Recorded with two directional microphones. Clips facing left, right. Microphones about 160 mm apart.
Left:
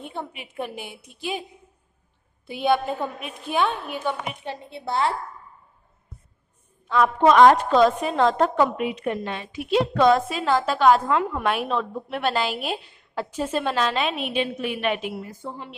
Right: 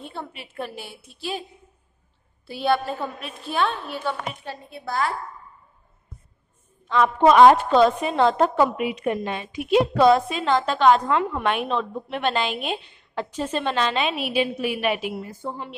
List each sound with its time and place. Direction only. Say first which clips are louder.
0.0 s a woman's voice: left 2 dB; 15° left (ahead or behind)
2.4 s a woman's voice: left 1 dB; 15° left (ahead or behind)
6.9 s a woman's voice: right 1 dB; centre (ahead or behind)
15.4 s speech: right 5 dB; 40° right (ahead or behind)